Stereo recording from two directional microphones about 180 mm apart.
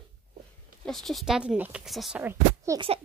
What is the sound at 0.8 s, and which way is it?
Speech, centre (ahead or behind).